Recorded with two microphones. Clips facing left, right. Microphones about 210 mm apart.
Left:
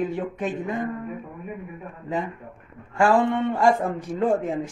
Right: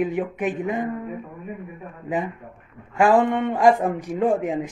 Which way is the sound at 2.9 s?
15° right (ahead or behind).